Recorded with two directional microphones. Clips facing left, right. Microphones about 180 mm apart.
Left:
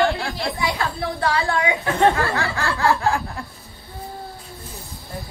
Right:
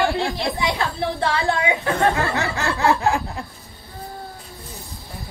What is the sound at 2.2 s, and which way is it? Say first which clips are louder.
Speech: even; 20° right (ahead or behind).